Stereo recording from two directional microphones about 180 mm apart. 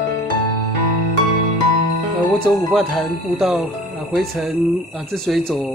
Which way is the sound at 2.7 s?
Centre (ahead or behind).